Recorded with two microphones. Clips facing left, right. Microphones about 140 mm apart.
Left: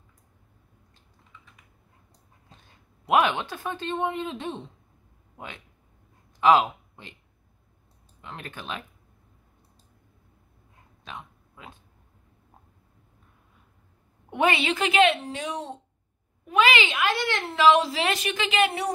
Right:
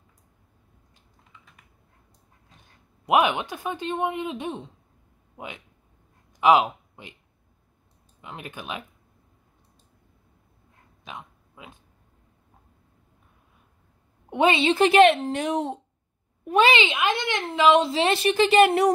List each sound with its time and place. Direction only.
3.1 s speech: 15° right (ahead or behind)
6.4 s speech: 15° right (ahead or behind)
8.2 s speech: 15° right (ahead or behind)
11.1 s a sound: 15° right (ahead or behind)
14.3 s a woman's voice: 20° right (ahead or behind)
14.8 s a woman's voice: 40° right (ahead or behind); by 15.7 s 55° right (ahead or behind)
16.4 s a child's voice: 35° right (ahead or behind)
16.7 s a woman's voice: 20° right (ahead or behind); by 18.9 s 45° right (ahead or behind)